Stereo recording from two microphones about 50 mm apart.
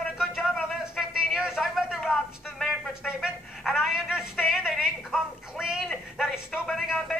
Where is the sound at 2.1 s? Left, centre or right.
Centre.